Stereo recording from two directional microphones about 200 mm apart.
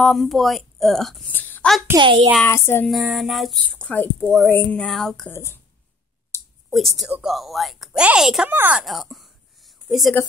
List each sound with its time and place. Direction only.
0.0 s a woman's voice: centre (ahead or behind)
2.0 s a child's voice: 25° right (ahead or behind)
2.3 s a sound: 10° left (ahead or behind)
2.9 s speech: centre (ahead or behind)
6.7 s a woman's voice: centre (ahead or behind)